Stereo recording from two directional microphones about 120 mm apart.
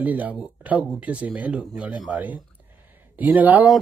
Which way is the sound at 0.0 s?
15° right (ahead or behind).